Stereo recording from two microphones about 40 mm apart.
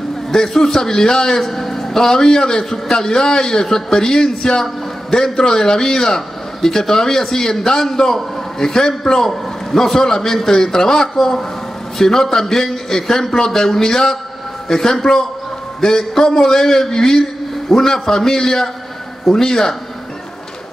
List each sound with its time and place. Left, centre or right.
0.3 s a man's voice: centre